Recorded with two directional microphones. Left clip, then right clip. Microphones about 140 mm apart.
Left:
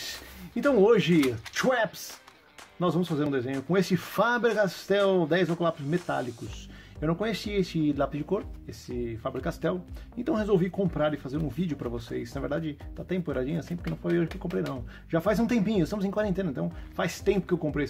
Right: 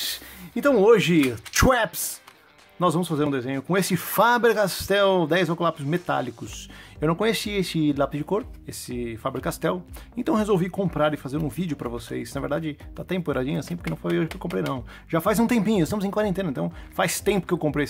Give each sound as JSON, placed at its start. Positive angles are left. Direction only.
{"t": 0.6, "sound": "speech", "side_deg": -35}